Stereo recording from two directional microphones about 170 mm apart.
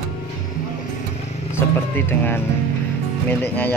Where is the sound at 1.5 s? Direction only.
10° left (ahead or behind).